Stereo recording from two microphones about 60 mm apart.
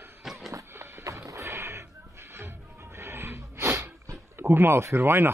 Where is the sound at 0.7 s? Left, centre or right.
Right.